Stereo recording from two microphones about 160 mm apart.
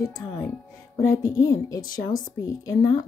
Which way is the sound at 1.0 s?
20° left (ahead or behind).